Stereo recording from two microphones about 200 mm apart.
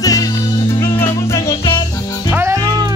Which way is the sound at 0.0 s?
15° left (ahead or behind).